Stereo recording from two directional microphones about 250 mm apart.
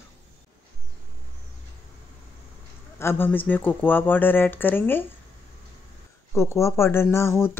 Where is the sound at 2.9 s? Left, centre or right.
Centre.